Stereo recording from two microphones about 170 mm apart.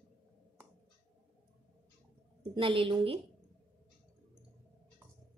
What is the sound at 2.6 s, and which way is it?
Speech, 30° right (ahead or behind).